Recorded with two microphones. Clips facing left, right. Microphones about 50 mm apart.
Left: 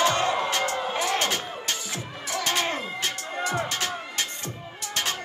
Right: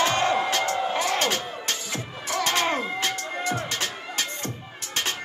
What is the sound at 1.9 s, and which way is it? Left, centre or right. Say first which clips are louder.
Music: right 3 dB; right.